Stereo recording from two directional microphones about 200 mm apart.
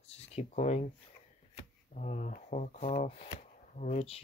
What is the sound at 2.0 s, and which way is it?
Speech, 40° left (ahead or behind).